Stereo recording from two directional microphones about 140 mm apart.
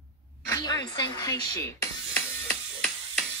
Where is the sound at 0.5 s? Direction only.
25° left (ahead or behind).